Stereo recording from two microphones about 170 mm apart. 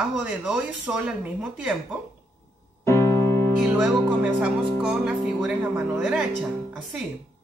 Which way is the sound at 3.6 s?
5° right (ahead or behind).